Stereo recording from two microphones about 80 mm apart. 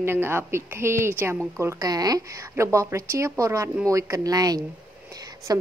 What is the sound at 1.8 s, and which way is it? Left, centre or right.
A woman's voice, right.